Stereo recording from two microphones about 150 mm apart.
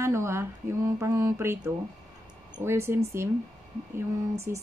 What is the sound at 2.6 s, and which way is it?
Speech, 15° right (ahead or behind).